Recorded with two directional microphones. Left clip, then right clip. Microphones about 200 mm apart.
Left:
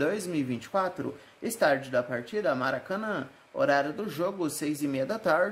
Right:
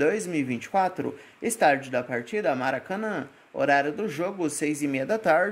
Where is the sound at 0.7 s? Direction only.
15° right (ahead or behind).